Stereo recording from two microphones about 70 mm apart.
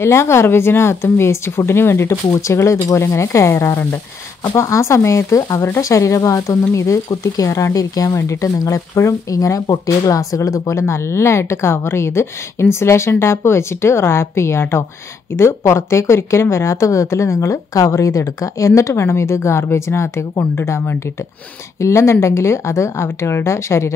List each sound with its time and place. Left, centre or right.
0.0 s a woman's voice: left